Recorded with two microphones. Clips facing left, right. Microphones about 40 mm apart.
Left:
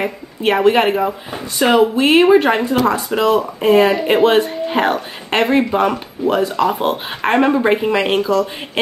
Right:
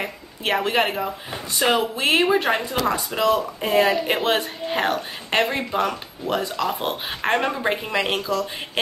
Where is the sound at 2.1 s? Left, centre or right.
Left.